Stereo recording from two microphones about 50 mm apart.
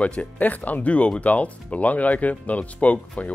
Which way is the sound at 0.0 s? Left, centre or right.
Left.